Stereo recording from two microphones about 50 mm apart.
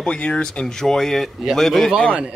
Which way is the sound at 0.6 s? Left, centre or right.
Centre.